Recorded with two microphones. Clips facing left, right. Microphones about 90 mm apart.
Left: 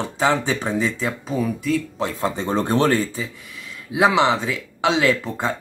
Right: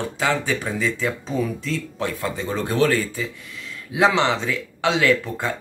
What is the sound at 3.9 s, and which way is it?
Speech, 15° left (ahead or behind).